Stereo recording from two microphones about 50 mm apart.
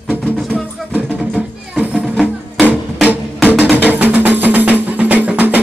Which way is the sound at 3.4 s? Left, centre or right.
Right.